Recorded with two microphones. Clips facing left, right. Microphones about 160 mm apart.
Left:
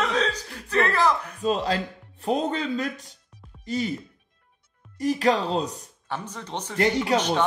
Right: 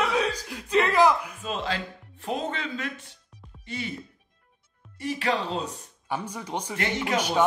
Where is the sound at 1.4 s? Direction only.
40° left (ahead or behind).